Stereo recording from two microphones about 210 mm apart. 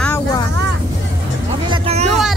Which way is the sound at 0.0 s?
10° left (ahead or behind).